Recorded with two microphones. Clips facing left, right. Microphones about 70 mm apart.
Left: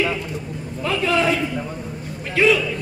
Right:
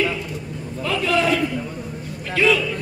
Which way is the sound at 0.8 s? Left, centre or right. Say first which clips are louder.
Even; left.